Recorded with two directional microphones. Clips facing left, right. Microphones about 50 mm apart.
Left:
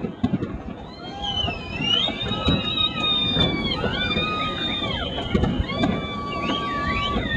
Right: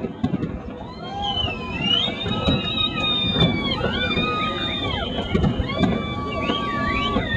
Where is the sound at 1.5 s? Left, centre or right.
Centre.